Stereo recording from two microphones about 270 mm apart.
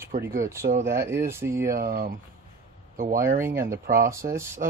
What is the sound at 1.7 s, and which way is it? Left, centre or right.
Speech, right.